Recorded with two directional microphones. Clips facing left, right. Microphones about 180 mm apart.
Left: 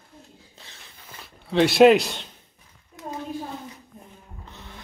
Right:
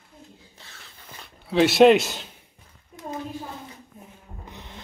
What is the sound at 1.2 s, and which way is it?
Speech, centre (ahead or behind).